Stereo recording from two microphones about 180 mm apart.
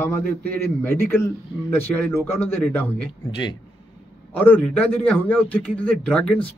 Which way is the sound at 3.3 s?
25° left (ahead or behind).